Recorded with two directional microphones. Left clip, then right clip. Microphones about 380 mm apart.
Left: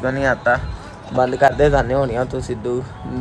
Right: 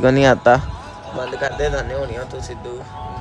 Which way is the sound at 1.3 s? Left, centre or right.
Centre.